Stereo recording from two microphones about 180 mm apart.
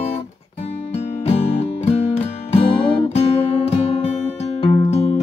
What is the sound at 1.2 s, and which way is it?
Music, 35° left (ahead or behind).